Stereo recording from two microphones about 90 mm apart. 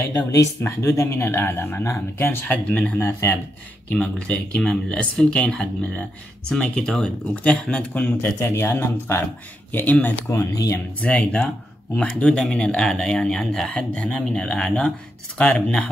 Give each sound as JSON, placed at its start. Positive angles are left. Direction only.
{"t": 0.3, "sound": "speech", "side_deg": 35}
{"t": 2.4, "sound": "speech", "side_deg": 10}
{"t": 3.0, "sound": "speech", "side_deg": 25}
{"t": 3.9, "sound": "speech", "side_deg": 15}
{"t": 8.4, "sound": "speech", "side_deg": 30}
{"t": 10.2, "sound": "speech", "side_deg": 30}
{"t": 11.0, "sound": "speech", "side_deg": 10}